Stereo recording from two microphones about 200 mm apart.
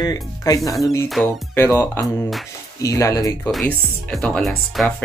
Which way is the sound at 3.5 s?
Centre (ahead or behind).